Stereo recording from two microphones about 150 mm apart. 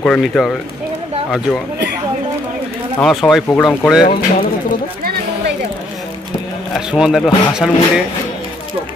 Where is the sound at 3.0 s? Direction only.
Centre (ahead or behind).